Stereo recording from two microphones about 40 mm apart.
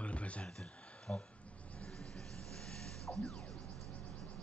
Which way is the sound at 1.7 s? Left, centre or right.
Left.